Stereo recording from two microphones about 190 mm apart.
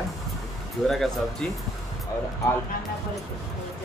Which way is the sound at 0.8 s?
Centre (ahead or behind).